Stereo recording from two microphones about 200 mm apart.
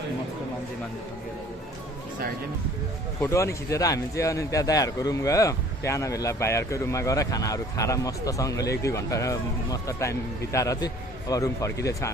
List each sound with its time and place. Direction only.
3.2 s a man's voice: 15° left (ahead or behind)